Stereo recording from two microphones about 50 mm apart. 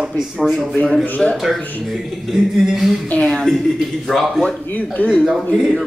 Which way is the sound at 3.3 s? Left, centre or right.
Centre.